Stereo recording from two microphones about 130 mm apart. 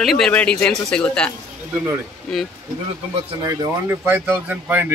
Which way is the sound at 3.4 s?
25° right (ahead or behind).